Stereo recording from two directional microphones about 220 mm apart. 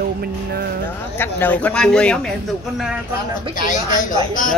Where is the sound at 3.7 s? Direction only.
35° left (ahead or behind).